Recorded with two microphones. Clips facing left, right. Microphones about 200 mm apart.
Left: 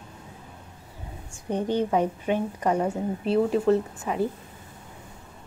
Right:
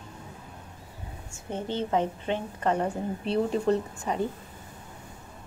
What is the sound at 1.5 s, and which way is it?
A woman's voice, 15° left (ahead or behind).